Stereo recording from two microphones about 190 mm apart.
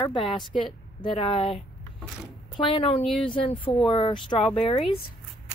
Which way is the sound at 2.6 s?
30° left (ahead or behind).